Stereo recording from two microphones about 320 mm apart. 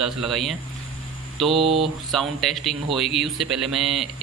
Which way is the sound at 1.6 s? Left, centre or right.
Centre.